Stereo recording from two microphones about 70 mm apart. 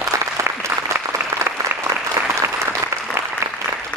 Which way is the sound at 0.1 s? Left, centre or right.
Right.